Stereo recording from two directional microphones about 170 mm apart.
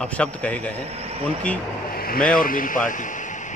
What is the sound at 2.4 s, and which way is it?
Speech, 55° left (ahead or behind).